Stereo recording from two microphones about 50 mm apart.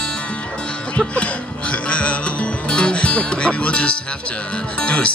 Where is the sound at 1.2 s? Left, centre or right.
Left.